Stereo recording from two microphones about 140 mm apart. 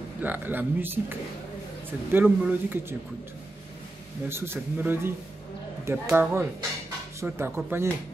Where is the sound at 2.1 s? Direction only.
10° right (ahead or behind).